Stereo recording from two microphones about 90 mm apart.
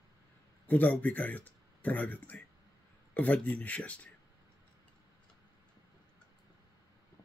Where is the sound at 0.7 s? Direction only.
15° left (ahead or behind).